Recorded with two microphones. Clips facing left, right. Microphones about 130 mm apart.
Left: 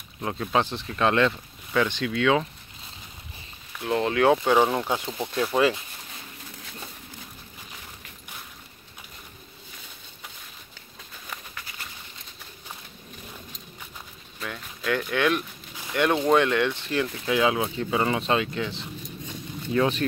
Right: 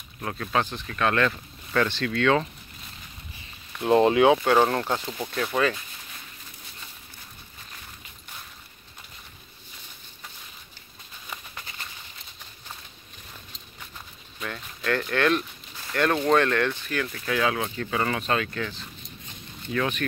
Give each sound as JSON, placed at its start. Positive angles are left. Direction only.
{"t": 0.2, "sound": "speech", "side_deg": 15}
{"t": 1.3, "sound": "speech", "side_deg": 10}
{"t": 4.0, "sound": "speech", "side_deg": -20}
{"t": 4.3, "sound": "speech", "side_deg": 0}
{"t": 5.2, "sound": "speech", "side_deg": 20}
{"t": 14.4, "sound": "speech", "side_deg": 5}